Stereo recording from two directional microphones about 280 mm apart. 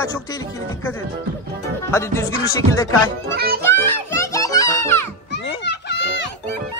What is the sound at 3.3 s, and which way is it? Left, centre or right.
Speech, right.